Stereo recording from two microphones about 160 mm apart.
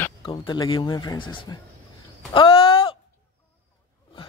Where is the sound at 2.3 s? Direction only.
35° left (ahead or behind).